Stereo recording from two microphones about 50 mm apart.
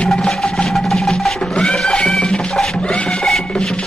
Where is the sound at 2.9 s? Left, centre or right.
Left.